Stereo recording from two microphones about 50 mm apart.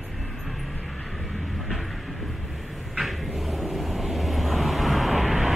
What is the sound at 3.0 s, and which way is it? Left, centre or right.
Vehicle, centre.